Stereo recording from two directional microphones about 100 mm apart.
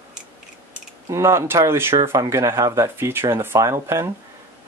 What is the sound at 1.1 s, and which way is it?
Speech, 30° right (ahead or behind).